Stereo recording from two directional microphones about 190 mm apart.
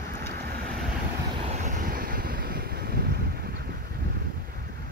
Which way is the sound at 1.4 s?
40° right (ahead or behind).